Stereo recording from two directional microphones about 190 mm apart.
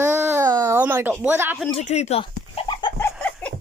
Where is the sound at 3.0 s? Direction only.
10° left (ahead or behind).